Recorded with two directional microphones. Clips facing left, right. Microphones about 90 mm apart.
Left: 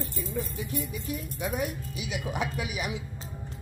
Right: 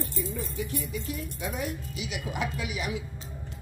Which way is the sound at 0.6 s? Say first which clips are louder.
Even; 20° left (ahead or behind).